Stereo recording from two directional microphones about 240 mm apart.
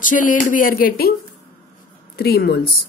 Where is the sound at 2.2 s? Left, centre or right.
Left.